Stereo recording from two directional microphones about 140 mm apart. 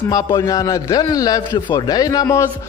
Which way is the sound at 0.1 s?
25° left (ahead or behind).